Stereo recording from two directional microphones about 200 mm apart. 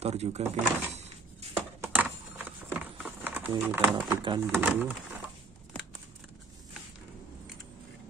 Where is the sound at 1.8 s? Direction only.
10° right (ahead or behind).